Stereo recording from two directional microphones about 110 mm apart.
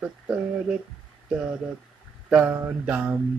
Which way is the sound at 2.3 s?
10° right (ahead or behind).